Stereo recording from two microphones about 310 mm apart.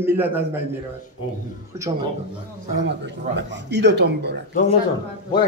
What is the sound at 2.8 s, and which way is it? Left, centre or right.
Speech, right.